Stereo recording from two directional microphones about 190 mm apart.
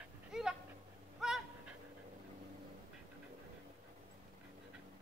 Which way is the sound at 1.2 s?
Centre (ahead or behind).